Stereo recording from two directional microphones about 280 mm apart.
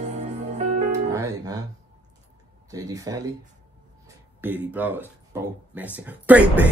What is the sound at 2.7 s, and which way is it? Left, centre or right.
Speech, centre.